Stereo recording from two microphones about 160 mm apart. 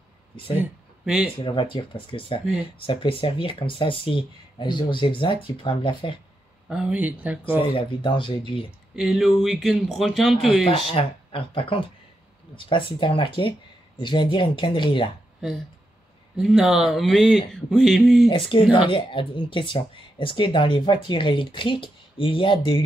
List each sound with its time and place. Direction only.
0.6 s a sound: 5° right (ahead or behind)
1.4 s speech: 30° left (ahead or behind)
6.7 s speech: 5° right (ahead or behind)
7.7 s speech: 30° left (ahead or behind)
8.9 s speech: centre (ahead or behind)
10.8 s speech: 35° left (ahead or behind)
16.3 s speech: centre (ahead or behind)
18.3 s speech: 35° left (ahead or behind)